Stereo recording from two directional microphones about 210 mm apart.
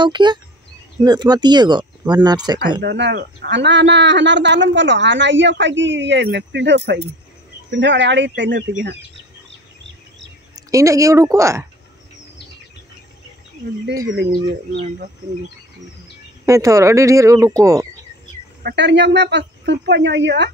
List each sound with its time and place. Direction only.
0.0 s speech: 20° right (ahead or behind)
2.8 s speech: 55° right (ahead or behind)
10.5 s a woman's voice: 15° right (ahead or behind)
16.4 s speech: 15° right (ahead or behind)
18.6 s speech: 50° right (ahead or behind)